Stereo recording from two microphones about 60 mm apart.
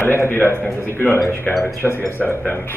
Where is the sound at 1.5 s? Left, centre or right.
Left.